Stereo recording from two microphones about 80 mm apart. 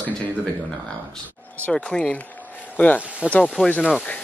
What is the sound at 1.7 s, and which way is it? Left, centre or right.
Speech, centre.